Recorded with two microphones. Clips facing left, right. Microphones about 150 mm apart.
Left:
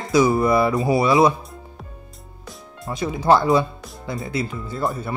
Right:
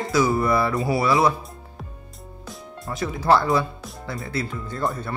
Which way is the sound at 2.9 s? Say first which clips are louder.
Left 2 dB; 15° left (ahead or behind).